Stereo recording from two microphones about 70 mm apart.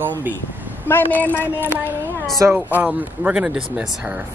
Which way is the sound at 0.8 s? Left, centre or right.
Left.